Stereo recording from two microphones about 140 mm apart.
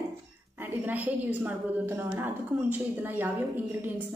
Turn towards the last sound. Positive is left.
turn(degrees=-15)  # may be behind; listen again after turning